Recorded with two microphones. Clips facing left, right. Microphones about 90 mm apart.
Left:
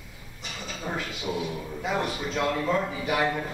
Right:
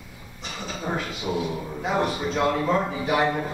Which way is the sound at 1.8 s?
30° right (ahead or behind).